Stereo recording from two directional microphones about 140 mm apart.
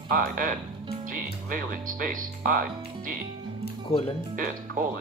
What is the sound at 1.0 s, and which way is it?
Speech, 75° right (ahead or behind).